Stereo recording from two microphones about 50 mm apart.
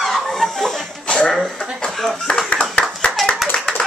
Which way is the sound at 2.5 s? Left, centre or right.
Left.